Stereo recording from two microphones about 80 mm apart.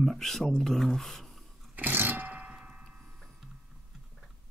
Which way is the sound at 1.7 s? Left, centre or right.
Right.